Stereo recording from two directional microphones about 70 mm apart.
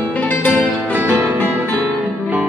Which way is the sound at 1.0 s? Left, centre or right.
Right.